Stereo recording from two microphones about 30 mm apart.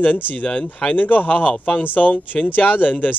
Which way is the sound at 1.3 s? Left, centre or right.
Left.